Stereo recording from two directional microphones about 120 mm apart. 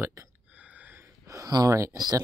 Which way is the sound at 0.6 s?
10° right (ahead or behind).